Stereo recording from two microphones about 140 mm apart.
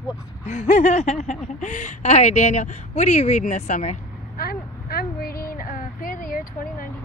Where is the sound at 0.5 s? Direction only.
60° left (ahead or behind); by 6.9 s 90° left.